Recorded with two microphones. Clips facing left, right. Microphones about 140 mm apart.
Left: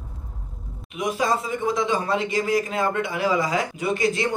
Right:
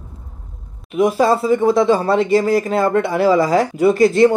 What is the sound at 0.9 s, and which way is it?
Speech, 35° right (ahead or behind).